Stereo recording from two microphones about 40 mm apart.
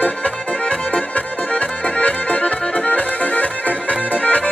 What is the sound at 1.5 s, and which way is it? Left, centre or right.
Accordion, left.